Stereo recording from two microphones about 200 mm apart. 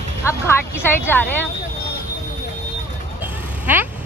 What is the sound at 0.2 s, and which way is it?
Speech, 15° left (ahead or behind).